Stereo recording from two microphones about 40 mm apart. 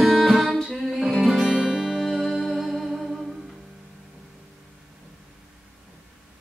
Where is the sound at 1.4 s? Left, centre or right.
Centre.